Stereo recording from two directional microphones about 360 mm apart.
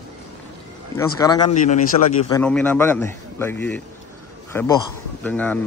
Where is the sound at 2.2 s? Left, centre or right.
Centre.